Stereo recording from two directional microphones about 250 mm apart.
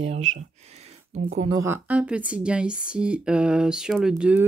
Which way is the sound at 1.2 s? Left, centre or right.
Right.